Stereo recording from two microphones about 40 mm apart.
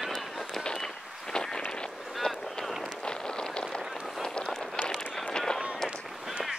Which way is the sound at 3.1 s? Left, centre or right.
Left.